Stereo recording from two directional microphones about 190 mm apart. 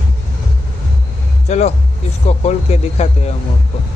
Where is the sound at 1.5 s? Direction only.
35° left (ahead or behind).